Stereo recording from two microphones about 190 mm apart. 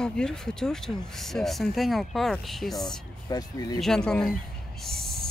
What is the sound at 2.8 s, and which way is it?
Speech, 20° left (ahead or behind).